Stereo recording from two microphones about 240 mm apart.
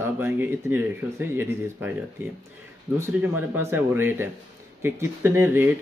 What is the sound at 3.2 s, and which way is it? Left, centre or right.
Speech, centre.